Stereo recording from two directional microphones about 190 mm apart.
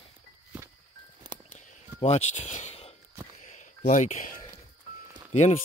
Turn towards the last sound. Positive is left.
turn(degrees=40)  # may be behind; listen again after turning